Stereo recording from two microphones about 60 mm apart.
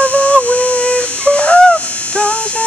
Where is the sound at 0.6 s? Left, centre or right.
Centre.